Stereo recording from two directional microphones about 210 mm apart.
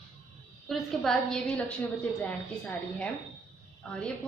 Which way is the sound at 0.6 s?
Centre (ahead or behind).